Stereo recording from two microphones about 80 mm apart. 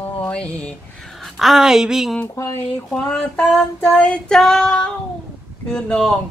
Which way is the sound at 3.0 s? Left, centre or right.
Centre.